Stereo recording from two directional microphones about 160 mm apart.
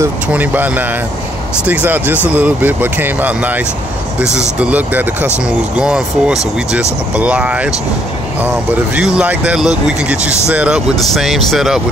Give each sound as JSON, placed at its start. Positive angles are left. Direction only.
{"t": 0.0, "sound": "speech", "side_deg": -10}
{"t": 8.9, "sound": "speech", "side_deg": -5}